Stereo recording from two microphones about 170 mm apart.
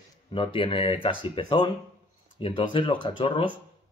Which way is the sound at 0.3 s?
30° left (ahead or behind).